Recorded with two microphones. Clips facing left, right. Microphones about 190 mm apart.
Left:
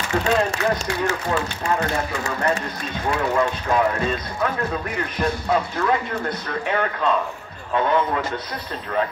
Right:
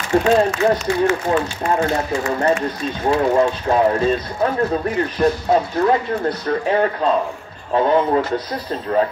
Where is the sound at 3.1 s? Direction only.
30° right (ahead or behind).